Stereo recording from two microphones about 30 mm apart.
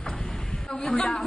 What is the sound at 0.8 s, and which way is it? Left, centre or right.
Speech, centre.